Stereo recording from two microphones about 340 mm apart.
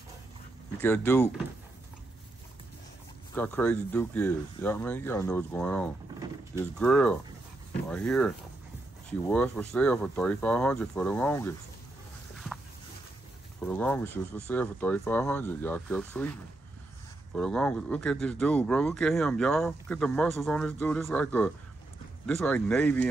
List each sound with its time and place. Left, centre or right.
0.7 s speech: centre
3.3 s speech: centre
13.6 s speech: centre
17.4 s speech: centre